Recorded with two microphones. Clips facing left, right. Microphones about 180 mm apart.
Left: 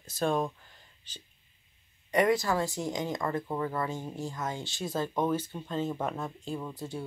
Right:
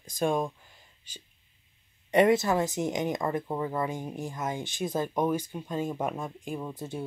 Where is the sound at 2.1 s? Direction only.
25° right (ahead or behind).